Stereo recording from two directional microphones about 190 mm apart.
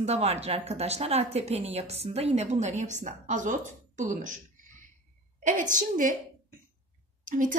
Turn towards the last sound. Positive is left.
turn(degrees=-45)  # may be behind; listen again after turning